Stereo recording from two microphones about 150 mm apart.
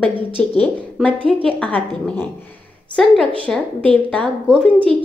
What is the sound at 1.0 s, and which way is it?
A woman's voice, 5° left (ahead or behind).